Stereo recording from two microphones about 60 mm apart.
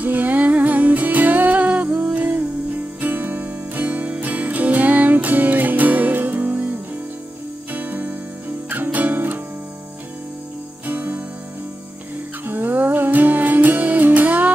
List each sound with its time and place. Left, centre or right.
0.0 s music: right
10.9 s music: right
12.4 s music: right